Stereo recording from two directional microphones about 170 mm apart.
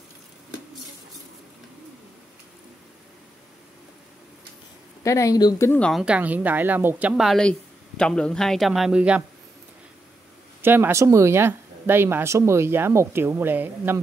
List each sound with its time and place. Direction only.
5.0 s speech: 20° left (ahead or behind)
5.8 s speech: centre (ahead or behind)
10.6 s speech: 15° right (ahead or behind)